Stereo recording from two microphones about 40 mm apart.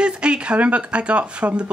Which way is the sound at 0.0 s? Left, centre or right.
Right.